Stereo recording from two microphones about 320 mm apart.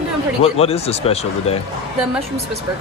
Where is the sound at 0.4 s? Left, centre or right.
Centre.